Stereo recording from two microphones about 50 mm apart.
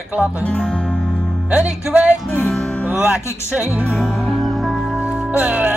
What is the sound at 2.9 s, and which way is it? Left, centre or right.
Speech, centre.